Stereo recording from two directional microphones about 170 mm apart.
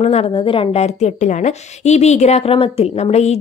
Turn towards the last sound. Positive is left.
turn(degrees=40)  # may be behind; listen again after turning